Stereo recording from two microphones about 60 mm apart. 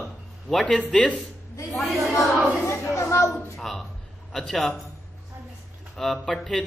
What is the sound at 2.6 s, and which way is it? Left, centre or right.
Speech, left.